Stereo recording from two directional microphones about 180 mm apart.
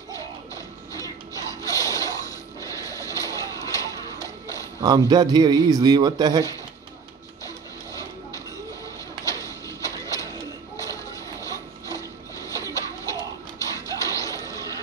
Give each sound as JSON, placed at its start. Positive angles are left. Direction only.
{"t": 0.1, "sound": "music", "side_deg": 20}
{"t": 4.8, "sound": "a man's voice", "side_deg": -20}
{"t": 7.4, "sound": "music", "side_deg": 20}
{"t": 9.2, "sound": "printer", "side_deg": 20}
{"t": 10.8, "sound": "a sound", "side_deg": 20}